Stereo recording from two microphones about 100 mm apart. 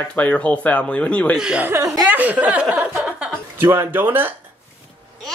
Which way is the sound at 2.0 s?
15° right (ahead or behind).